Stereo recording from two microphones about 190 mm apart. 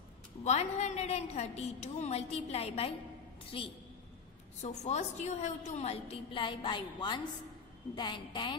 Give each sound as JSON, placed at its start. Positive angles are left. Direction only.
{"t": 0.4, "sound": "a woman's voice", "side_deg": 35}